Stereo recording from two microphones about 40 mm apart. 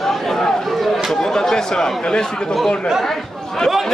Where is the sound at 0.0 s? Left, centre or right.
Centre.